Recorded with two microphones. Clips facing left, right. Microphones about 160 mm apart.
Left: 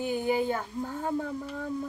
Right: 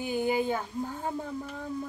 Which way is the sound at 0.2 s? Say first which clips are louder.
Right 1 dB; 15° right (ahead or behind).